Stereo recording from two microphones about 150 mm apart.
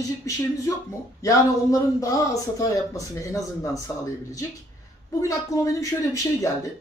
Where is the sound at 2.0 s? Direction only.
20° left (ahead or behind).